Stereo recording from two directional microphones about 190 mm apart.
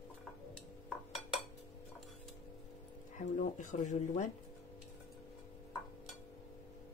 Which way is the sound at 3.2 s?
40° left (ahead or behind).